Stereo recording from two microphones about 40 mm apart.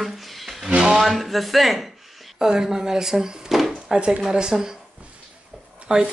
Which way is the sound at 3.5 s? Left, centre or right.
Centre.